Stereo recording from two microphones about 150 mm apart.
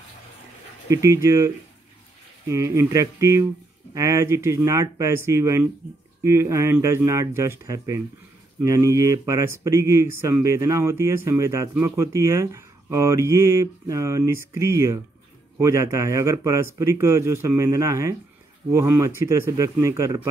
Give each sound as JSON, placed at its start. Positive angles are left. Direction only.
{"t": 0.8, "sound": "speech", "side_deg": -20}